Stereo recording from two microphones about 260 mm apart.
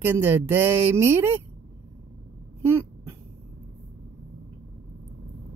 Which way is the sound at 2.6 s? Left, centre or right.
Centre.